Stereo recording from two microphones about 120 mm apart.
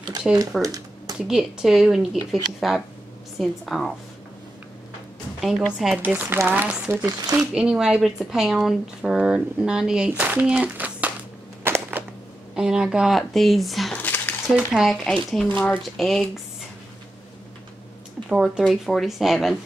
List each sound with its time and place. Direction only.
0.3 s speech: 5° right (ahead or behind)
0.6 s a sound: 30° right (ahead or behind)
1.2 s speech: 5° right (ahead or behind)
5.8 s speech: 10° right (ahead or behind)
7.5 s speech: 5° right (ahead or behind)
11.6 s a sound: 20° right (ahead or behind)
12.5 s speech: 5° right (ahead or behind)
13.9 s a sound: 15° left (ahead or behind)
14.5 s speech: 5° right (ahead or behind)
15.5 s speech: 15° left (ahead or behind)
16.0 s speech: centre (ahead or behind)
18.3 s speech: 10° right (ahead or behind)